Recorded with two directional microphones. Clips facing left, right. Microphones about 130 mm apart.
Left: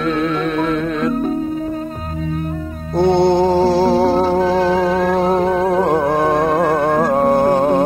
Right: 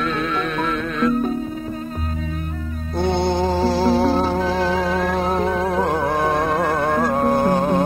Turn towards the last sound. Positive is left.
turn(degrees=35)  # may be behind; listen again after turning